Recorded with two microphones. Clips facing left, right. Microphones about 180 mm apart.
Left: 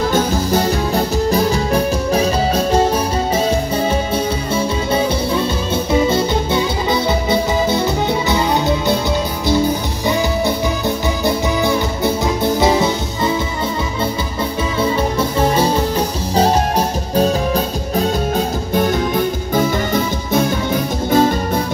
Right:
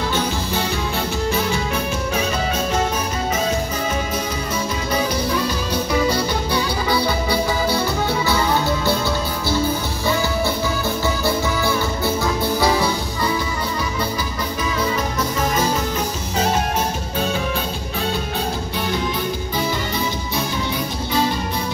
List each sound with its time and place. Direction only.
0.1 s music: 40° left (ahead or behind)
4.9 s music: 25° left (ahead or behind)
11.2 s music: 20° left (ahead or behind)
14.8 s music: 30° left (ahead or behind)
18.8 s music: 45° left (ahead or behind)